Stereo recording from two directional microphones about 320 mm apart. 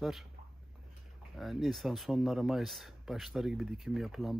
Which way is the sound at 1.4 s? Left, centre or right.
Centre.